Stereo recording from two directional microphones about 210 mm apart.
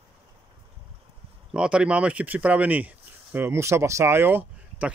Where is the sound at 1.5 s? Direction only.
5° right (ahead or behind).